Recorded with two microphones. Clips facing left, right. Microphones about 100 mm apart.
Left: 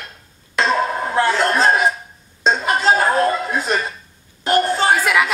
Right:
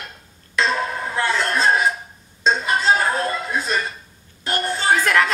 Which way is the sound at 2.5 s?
40° left (ahead or behind).